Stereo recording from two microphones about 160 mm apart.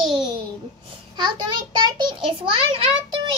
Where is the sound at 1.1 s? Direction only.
25° right (ahead or behind).